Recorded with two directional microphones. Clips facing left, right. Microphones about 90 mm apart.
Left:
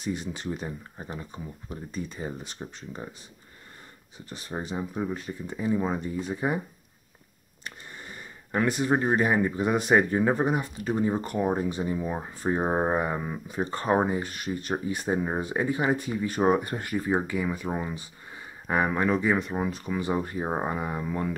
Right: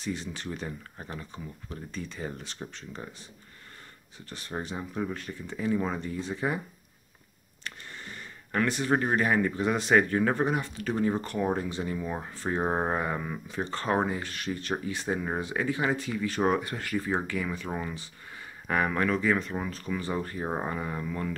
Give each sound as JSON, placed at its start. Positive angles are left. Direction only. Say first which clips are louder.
{"t": 0.0, "sound": "speech", "louder": "left 3 dB", "side_deg": 10}
{"t": 4.3, "sound": "speech", "louder": "left 2 dB", "side_deg": 5}
{"t": 8.0, "sound": "a sound", "louder": "left 1 dB", "side_deg": 15}
{"t": 8.6, "sound": "speech", "louder": "left 5 dB", "side_deg": 5}
{"t": 8.9, "sound": "speech", "louder": "left 1 dB", "side_deg": 20}